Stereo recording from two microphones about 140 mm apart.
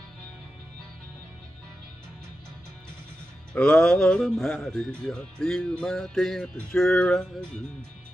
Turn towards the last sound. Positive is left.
turn(degrees=5)  # may be behind; listen again after turning